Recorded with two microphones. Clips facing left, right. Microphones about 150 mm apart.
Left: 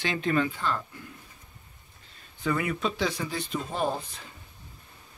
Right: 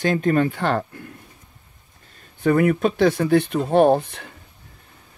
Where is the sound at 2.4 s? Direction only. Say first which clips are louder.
Right 11 dB; 55° right (ahead or behind).